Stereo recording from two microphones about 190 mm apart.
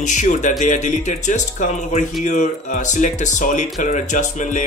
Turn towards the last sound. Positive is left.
turn(degrees=40)  # may be behind; listen again after turning